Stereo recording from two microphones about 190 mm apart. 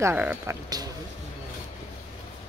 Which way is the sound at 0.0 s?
10° right (ahead or behind).